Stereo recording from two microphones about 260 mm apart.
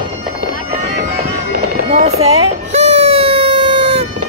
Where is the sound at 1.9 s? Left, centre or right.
Right.